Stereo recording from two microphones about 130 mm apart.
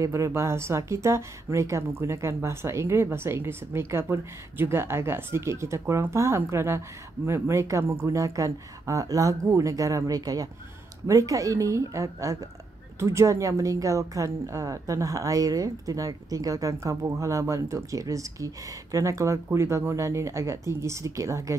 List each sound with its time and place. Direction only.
0.0 s a woman's voice: 25° right (ahead or behind)